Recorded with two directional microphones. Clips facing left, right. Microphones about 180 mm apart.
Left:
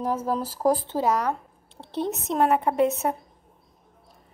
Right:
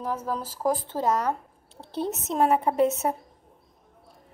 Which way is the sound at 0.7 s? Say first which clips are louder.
Left 3 dB; 30° left (ahead or behind).